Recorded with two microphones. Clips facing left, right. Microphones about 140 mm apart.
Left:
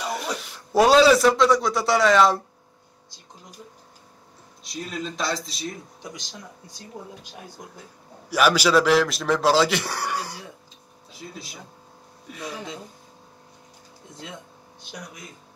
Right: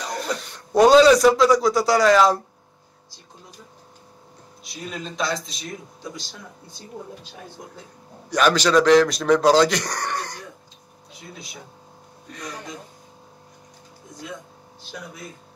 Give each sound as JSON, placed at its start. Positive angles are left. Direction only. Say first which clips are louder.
{"t": 0.0, "sound": "speech", "louder": "right 1 dB", "side_deg": 5}
{"t": 4.6, "sound": "a man's voice", "louder": "left 2 dB", "side_deg": 0}
{"t": 6.0, "sound": "speech", "louder": "right 3 dB", "side_deg": 20}
{"t": 8.3, "sound": "a man's voice", "louder": "right 1 dB", "side_deg": 5}